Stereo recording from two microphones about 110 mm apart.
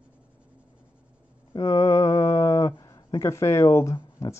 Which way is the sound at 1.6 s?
25° left (ahead or behind).